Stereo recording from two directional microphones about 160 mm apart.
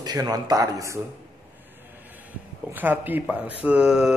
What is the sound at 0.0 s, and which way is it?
Speech, 25° right (ahead or behind).